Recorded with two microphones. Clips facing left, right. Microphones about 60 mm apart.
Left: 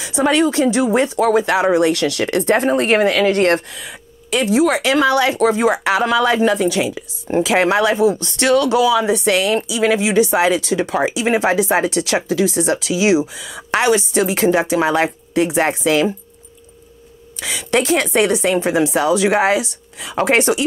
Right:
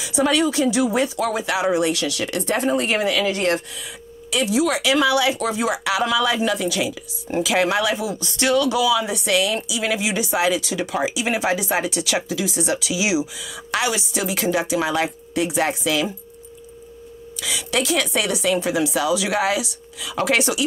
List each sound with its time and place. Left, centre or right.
0.0 s speech: left
17.4 s speech: left